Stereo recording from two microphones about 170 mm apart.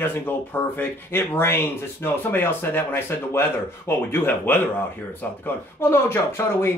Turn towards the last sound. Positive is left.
turn(degrees=15)  # may be behind; listen again after turning